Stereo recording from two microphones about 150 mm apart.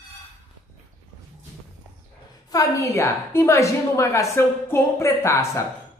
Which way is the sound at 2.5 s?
20° left (ahead or behind).